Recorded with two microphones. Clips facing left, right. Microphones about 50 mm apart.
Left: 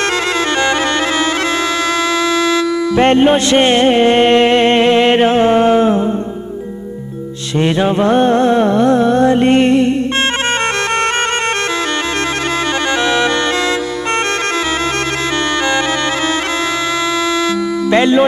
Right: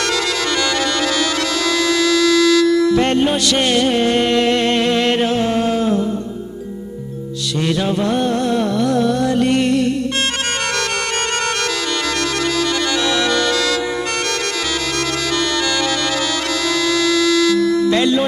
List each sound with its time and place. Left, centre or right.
0.0 s bagpipes: left
7.5 s music: left
12.8 s music: left
16.8 s a sound: left
17.9 s speech: left